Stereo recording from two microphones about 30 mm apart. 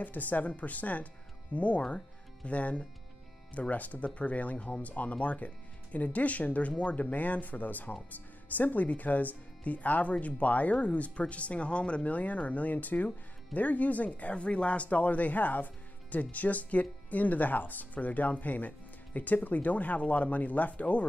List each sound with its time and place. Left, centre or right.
0.0 s speech: left